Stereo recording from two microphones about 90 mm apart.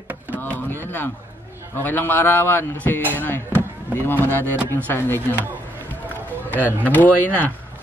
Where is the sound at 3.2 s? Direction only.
25° left (ahead or behind).